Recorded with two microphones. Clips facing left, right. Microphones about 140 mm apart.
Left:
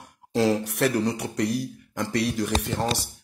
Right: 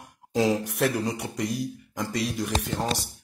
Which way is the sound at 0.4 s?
Centre (ahead or behind).